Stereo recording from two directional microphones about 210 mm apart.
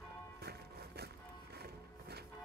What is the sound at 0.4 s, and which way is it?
Music, 50° right (ahead or behind).